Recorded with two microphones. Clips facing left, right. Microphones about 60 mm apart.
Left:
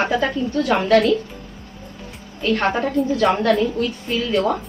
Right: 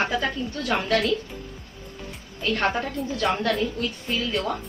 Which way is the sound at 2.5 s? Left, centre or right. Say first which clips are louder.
Left 3 dB; left.